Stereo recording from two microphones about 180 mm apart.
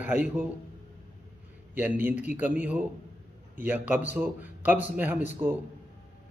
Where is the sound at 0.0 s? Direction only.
10° right (ahead or behind).